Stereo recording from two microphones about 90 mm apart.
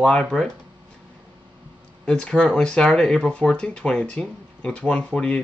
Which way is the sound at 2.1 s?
10° left (ahead or behind).